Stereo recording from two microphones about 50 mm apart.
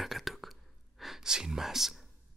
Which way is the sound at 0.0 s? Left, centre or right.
Centre.